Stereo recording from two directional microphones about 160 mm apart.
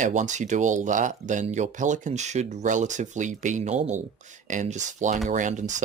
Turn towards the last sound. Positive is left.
turn(degrees=-50)  # may be behind; listen again after turning